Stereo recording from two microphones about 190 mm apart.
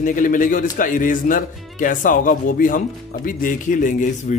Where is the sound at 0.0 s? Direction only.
45° left (ahead or behind).